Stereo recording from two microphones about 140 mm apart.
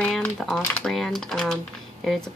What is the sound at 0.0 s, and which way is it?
Speech, 5° left (ahead or behind).